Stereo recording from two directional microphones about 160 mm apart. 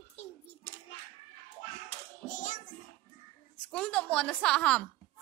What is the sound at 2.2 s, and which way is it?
Child singing, 50° left (ahead or behind).